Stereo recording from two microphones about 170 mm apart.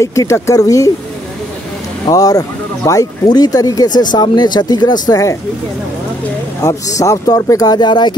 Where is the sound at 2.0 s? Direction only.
20° left (ahead or behind).